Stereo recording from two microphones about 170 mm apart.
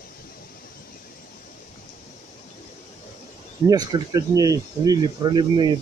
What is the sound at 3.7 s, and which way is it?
Speech, 20° right (ahead or behind).